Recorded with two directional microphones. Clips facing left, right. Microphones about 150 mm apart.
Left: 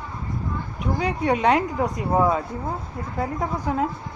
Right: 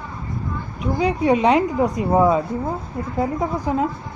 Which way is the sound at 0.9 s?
10° right (ahead or behind).